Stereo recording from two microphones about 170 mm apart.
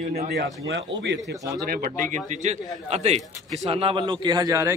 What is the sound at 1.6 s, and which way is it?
A man's voice, 55° right (ahead or behind).